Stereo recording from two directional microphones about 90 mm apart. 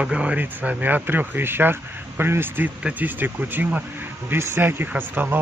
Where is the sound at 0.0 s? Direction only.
15° right (ahead or behind).